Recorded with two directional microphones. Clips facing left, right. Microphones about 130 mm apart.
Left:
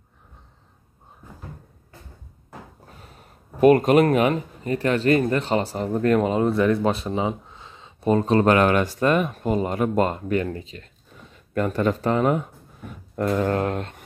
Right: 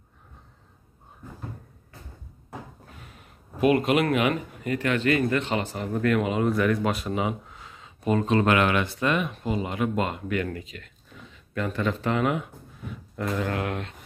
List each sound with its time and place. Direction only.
3.0 s speech: 35° left (ahead or behind)
11.2 s speech: 45° left (ahead or behind)
13.4 s speech: 40° left (ahead or behind)